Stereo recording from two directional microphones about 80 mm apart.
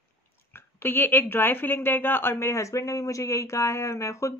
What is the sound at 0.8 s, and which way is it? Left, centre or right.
A woman's voice, left.